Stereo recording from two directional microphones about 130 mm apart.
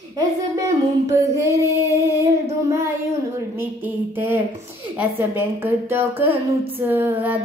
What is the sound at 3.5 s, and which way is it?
A woman's voice, 15° right (ahead or behind).